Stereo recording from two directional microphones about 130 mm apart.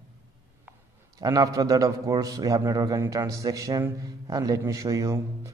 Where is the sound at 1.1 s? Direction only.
25° right (ahead or behind).